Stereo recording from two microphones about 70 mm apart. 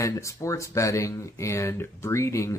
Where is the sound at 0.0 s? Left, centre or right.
Left.